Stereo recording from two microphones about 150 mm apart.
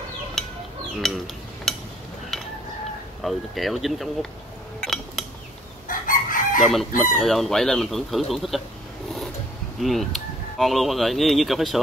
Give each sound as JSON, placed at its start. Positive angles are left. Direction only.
{"t": 1.0, "sound": "cutlery", "side_deg": 0}
{"t": 3.2, "sound": "speech", "side_deg": 0}
{"t": 4.8, "sound": "a sound", "side_deg": 0}
{"t": 5.9, "sound": "chicken", "side_deg": 65}
{"t": 6.6, "sound": "speech", "side_deg": 0}
{"t": 9.8, "sound": "speech", "side_deg": 0}